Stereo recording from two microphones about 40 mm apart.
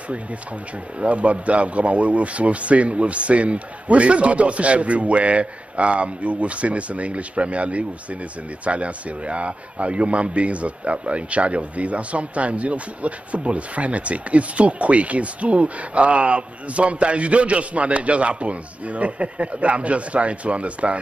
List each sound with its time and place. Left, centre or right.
0.9 s speech: right